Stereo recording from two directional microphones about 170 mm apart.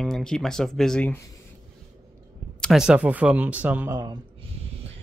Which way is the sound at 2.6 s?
Centre (ahead or behind).